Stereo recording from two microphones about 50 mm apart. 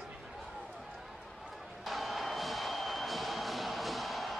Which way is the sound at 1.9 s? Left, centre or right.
Centre.